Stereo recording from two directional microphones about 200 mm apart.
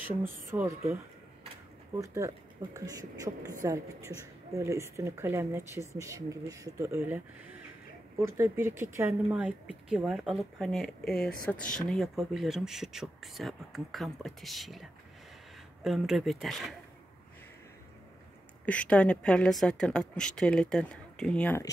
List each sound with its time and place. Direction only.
0.2 s speech: 10° right (ahead or behind)
2.0 s speech: 15° right (ahead or behind)
8.2 s a woman's voice: 15° right (ahead or behind)
18.7 s a woman's voice: 5° left (ahead or behind)